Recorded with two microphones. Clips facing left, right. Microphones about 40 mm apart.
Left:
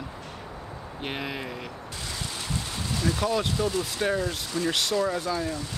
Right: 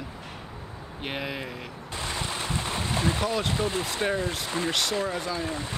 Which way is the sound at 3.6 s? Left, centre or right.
Right.